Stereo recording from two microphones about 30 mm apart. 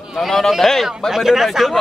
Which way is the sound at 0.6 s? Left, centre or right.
Centre.